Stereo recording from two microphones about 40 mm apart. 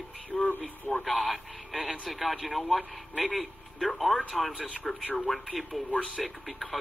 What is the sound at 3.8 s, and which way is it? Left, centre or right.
Speech, centre.